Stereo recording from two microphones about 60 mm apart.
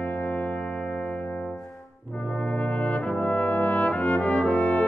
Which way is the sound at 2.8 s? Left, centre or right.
Centre.